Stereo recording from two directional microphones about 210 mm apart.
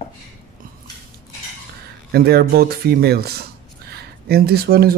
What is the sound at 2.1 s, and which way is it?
Speech, 50° right (ahead or behind).